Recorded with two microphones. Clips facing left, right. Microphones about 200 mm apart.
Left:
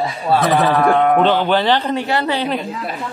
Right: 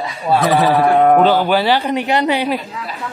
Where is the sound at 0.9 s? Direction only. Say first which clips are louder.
Right 3 dB; 40° right (ahead or behind).